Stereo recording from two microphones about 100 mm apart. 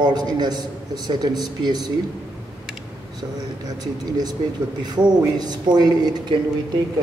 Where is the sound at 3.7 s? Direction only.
40° right (ahead or behind).